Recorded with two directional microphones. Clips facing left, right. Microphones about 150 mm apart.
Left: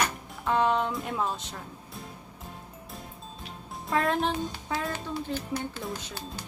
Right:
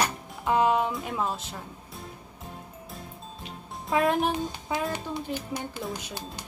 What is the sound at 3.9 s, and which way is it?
Speech, centre (ahead or behind).